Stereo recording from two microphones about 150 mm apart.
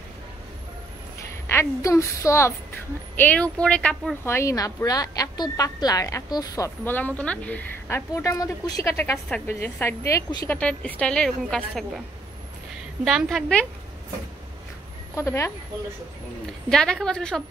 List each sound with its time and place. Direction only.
1.5 s a woman's voice: 20° left (ahead or behind)
4.3 s speech: 20° left (ahead or behind)
8.1 s a woman's voice: 20° left (ahead or behind); by 11.8 s 5° left (ahead or behind)
13.0 s a woman's voice: 5° right (ahead or behind)
15.1 s speech: 20° left (ahead or behind)
16.6 s a woman's voice: 5° left (ahead or behind)